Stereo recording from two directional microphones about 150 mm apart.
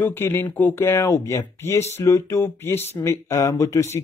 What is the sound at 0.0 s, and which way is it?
Speech, 15° left (ahead or behind).